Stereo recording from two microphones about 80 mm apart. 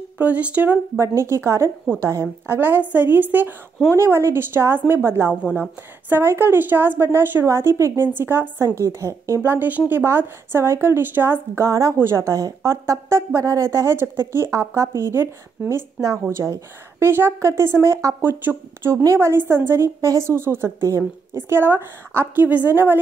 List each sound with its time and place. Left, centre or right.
0.2 s a woman's voice: centre
0.9 s a woman's voice: right
3.9 s a woman's voice: right
5.4 s a woman's voice: left
6.0 s a woman's voice: right